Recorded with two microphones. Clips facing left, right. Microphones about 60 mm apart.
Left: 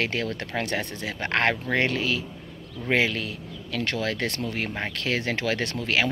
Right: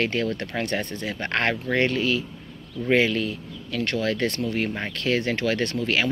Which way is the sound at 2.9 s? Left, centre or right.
Left.